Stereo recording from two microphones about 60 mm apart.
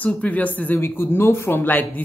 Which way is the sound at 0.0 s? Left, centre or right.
Left.